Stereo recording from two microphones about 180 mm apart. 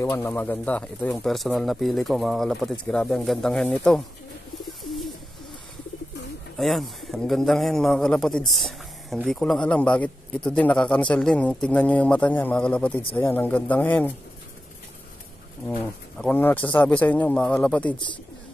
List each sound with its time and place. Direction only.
0.0 s a man's voice: 10° left (ahead or behind)
4.8 s bird: centre (ahead or behind)
6.6 s a man's voice: centre (ahead or behind)
15.8 s speech: 10° left (ahead or behind)